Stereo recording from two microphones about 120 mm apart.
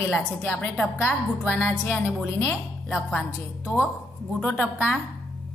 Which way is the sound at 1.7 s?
20° left (ahead or behind).